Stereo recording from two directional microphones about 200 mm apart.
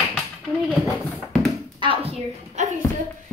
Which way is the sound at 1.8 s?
30° right (ahead or behind).